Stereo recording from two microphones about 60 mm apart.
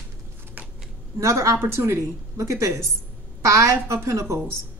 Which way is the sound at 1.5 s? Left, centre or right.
Right.